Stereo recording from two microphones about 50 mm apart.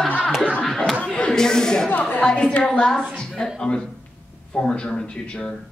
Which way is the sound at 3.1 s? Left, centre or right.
Centre.